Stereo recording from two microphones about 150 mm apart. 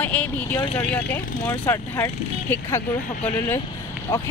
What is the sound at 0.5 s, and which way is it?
Vehicle, 35° left (ahead or behind).